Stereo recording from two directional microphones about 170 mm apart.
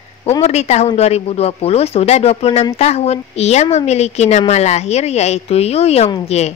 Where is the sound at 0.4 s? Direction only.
40° left (ahead or behind).